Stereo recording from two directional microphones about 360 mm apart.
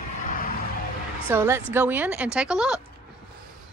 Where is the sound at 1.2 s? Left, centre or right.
Centre.